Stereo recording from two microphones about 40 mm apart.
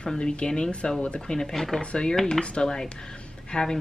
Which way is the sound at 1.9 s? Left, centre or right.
Left.